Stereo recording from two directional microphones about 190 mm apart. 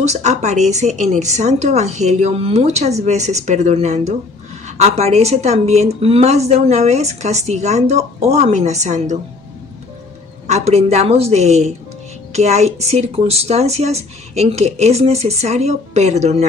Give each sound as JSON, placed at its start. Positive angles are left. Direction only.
{"t": 0.0, "sound": "a woman's voice", "side_deg": -35}
{"t": 10.4, "sound": "a woman's voice", "side_deg": -35}